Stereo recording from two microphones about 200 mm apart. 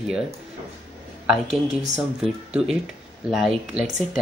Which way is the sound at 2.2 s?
5° right (ahead or behind).